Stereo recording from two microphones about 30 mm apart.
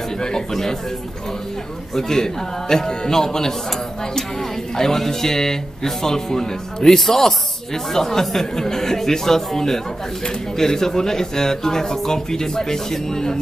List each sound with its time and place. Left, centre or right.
0.5 s speech: centre
2.0 s speech: centre